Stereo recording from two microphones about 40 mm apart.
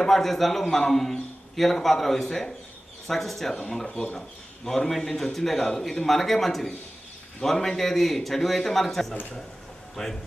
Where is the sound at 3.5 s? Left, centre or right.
Left.